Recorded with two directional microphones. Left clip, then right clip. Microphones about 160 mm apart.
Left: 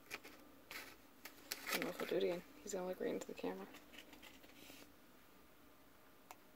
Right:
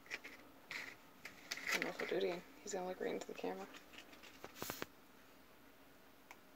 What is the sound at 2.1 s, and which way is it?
Speech, 55° left (ahead or behind).